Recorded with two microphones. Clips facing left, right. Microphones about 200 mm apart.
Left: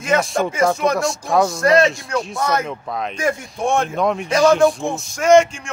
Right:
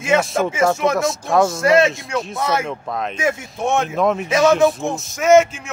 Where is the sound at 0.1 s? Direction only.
5° right (ahead or behind).